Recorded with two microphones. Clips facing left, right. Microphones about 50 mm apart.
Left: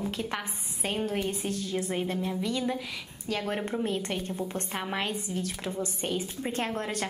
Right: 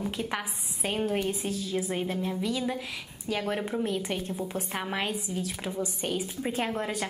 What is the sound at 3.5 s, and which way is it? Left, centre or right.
A woman's voice, centre.